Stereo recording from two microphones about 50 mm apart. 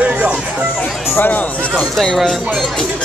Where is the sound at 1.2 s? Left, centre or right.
Left.